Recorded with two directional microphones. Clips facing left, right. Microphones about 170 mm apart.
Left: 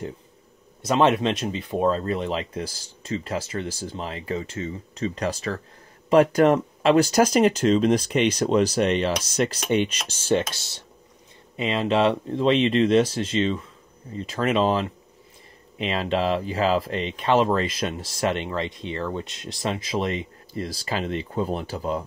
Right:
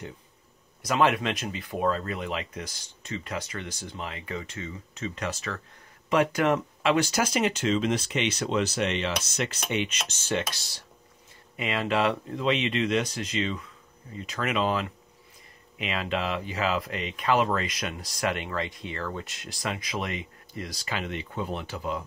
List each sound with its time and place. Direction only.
0.8 s speech: 25° left (ahead or behind)